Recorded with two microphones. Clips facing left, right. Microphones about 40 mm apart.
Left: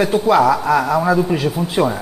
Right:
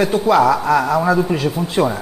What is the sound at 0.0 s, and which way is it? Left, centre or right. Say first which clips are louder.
Speech: even; centre.